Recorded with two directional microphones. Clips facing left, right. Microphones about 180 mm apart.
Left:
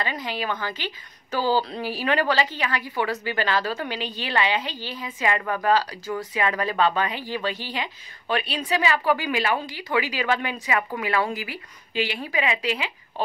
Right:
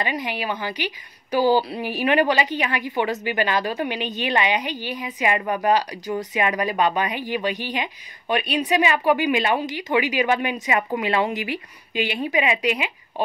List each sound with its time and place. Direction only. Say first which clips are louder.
0.0 s a woman's voice: right 2 dB; 15° right (ahead or behind)